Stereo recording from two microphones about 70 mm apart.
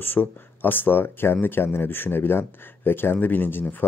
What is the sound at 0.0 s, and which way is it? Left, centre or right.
Speech, left.